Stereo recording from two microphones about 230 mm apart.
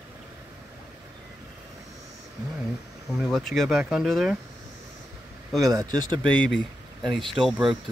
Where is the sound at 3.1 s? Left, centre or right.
Centre.